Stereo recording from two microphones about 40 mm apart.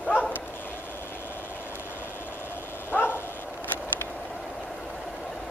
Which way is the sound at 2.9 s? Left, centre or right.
Left.